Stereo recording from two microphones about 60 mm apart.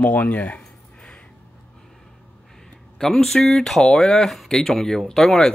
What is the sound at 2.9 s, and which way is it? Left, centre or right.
Speech, centre.